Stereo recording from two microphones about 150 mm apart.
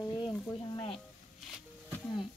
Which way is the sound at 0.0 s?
25° left (ahead or behind).